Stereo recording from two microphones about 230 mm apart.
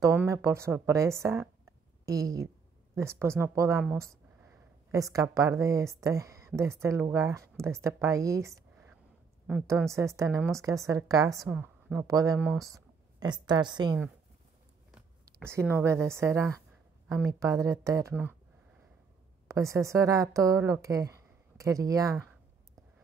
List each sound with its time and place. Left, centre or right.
0.0 s a woman's voice: centre
14.9 s a woman's voice: centre
19.4 s a woman's voice: centre